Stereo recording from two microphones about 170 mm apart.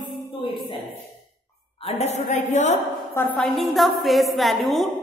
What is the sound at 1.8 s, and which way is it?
Speech, 40° left (ahead or behind).